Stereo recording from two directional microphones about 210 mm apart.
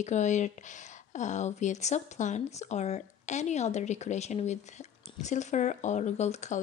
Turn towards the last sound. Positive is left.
turn(degrees=35)  # may be behind; listen again after turning